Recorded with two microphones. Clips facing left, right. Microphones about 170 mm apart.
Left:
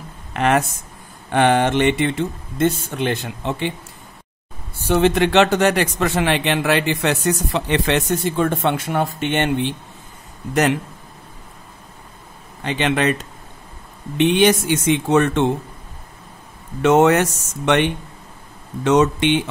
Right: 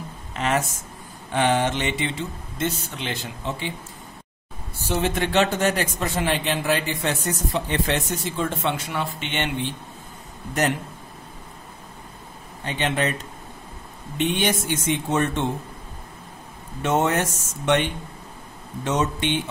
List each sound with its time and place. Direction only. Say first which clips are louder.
0.3 s speech: left 6 dB; 60° left (ahead or behind)
4.8 s a man's voice: left 8 dB; 65° left (ahead or behind); by 9.7 s 50° left (ahead or behind)
10.5 s speech: left 6 dB; 90° left
12.6 s speech: left 5 dB; 90° left
14.1 s speech: left 8 dB; 80° left
16.8 s a man's voice: left 8 dB; 80° left
18.9 s speech: left 8 dB; 85° left